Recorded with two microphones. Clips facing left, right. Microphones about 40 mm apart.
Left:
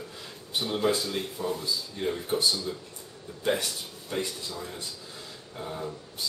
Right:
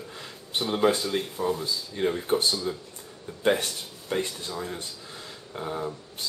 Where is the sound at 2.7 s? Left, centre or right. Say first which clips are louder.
Right 3 dB; centre.